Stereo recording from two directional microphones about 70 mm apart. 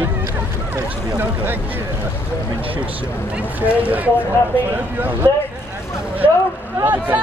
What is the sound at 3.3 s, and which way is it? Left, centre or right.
Speech, right.